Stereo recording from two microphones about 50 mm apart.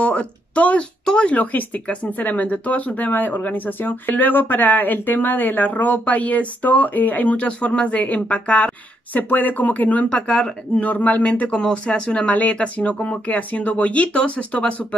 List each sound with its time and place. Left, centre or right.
0.0 s a sound: left
1.0 s speech: left
1.3 s speech: left
11.5 s speech: centre